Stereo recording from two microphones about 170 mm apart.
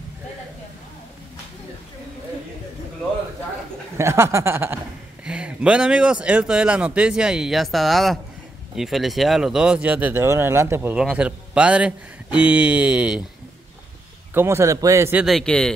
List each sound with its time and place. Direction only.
4.0 s speech: 15° right (ahead or behind)
14.3 s speech: 15° right (ahead or behind)
15.2 s speech: centre (ahead or behind)